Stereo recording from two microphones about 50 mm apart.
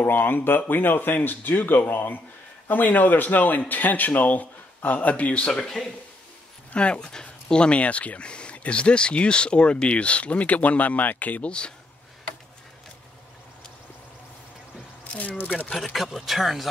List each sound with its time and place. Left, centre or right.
0.0 s a man's voice: left
5.5 s speech: centre
6.7 s speech: left
15.0 s a man's voice: left
15.7 s speech: centre